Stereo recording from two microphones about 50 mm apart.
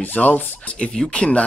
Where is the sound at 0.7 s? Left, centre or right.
Left.